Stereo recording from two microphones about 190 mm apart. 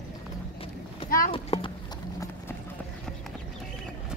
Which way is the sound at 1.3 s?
30° left (ahead or behind).